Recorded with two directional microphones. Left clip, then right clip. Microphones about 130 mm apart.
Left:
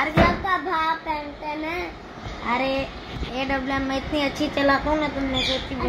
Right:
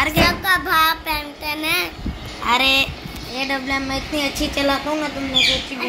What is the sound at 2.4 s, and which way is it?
A woman's voice, 15° right (ahead or behind).